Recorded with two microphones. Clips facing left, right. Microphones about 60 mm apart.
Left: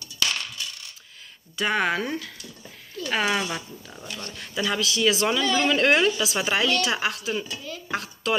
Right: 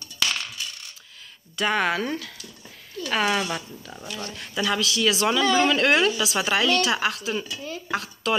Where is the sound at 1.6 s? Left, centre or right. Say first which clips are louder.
Right 1 dB; centre.